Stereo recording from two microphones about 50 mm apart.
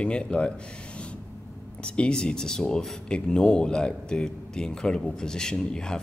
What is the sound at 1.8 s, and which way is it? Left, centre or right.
Speech, left.